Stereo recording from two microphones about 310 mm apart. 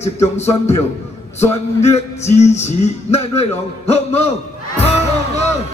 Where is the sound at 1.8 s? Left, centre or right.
Left.